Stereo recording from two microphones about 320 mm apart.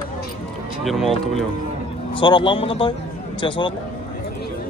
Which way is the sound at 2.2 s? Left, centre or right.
Centre.